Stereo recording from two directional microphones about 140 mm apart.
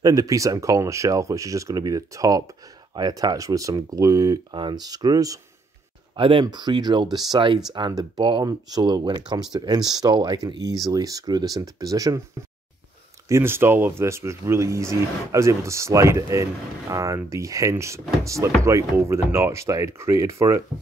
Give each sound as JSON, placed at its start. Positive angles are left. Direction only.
{"t": 0.0, "sound": "speech", "side_deg": -25}
{"t": 6.1, "sound": "speech", "side_deg": -40}
{"t": 13.3, "sound": "speech", "side_deg": -15}